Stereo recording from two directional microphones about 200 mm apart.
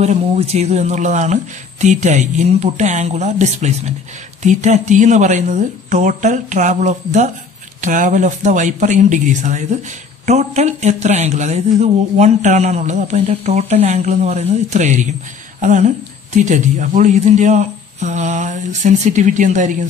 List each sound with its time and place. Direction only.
0.0 s a man's voice: 35° right (ahead or behind)